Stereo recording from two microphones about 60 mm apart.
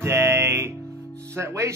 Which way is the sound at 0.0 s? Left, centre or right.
Right.